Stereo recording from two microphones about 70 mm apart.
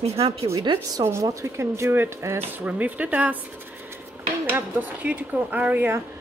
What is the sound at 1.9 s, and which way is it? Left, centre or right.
Speech, right.